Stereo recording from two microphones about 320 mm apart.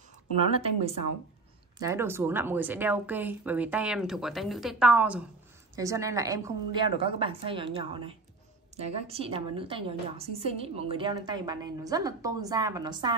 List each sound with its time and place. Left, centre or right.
0.5 s speech: centre
1.8 s a woman's voice: centre